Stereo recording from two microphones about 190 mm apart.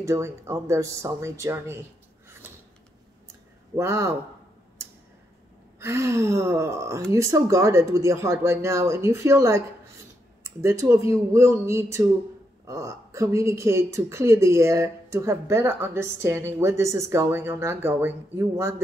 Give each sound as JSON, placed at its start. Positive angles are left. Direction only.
{"t": 0.0, "sound": "a woman's voice", "side_deg": -15}
{"t": 3.7, "sound": "a woman's voice", "side_deg": -15}
{"t": 5.8, "sound": "a woman's voice", "side_deg": -15}